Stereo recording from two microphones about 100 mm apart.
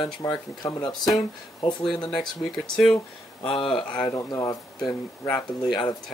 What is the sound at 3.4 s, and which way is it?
Speech, 65° left (ahead or behind).